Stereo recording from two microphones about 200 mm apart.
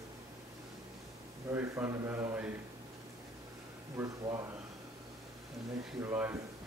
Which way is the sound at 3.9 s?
15° right (ahead or behind).